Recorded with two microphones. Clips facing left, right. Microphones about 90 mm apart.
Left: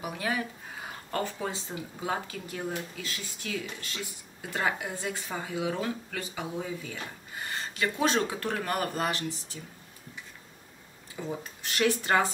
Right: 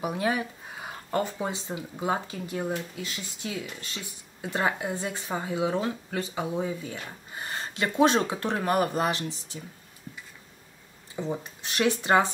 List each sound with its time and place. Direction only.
0.0 s speech: 25° right (ahead or behind)
11.1 s speech: 20° right (ahead or behind)